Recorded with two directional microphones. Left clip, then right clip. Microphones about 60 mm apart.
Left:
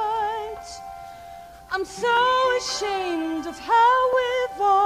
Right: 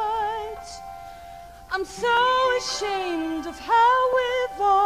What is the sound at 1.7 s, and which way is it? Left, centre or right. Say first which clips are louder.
Music: even; left.